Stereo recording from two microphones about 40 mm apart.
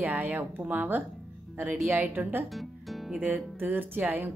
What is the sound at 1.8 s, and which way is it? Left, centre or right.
Speech, right.